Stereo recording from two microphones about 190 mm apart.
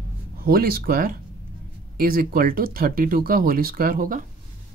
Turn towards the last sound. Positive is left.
turn(degrees=-45)  # may be behind; listen again after turning